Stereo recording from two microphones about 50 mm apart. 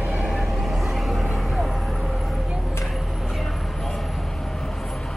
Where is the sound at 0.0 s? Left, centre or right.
Right.